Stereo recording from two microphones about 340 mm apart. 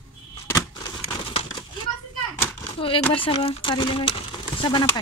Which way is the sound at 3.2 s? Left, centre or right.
Centre.